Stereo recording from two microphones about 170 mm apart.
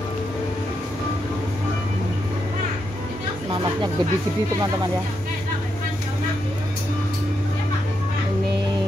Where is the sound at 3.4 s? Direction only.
25° right (ahead or behind).